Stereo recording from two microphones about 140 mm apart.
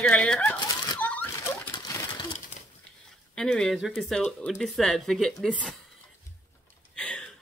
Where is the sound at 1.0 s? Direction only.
10° left (ahead or behind).